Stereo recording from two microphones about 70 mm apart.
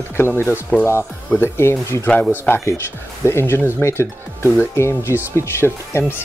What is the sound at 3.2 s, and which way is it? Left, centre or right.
Speech, left.